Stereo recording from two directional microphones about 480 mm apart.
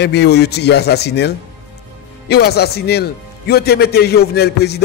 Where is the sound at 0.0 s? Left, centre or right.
Left.